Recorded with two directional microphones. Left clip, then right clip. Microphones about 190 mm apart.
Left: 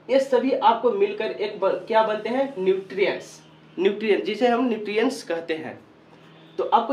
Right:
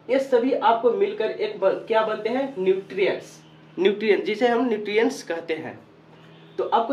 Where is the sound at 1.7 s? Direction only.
Centre (ahead or behind).